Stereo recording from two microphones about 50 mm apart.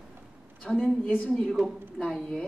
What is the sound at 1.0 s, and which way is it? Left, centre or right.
Speech, left.